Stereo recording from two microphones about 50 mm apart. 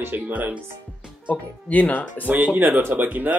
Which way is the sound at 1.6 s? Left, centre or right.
Left.